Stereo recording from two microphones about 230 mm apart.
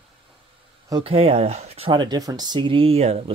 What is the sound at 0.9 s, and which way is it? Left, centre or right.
Speech, right.